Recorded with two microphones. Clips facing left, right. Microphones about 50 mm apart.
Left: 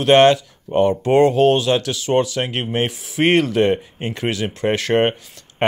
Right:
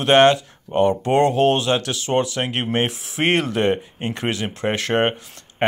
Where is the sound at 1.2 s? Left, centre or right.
Right.